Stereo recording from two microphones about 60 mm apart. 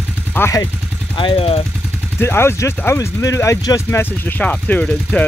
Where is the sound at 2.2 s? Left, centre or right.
Left.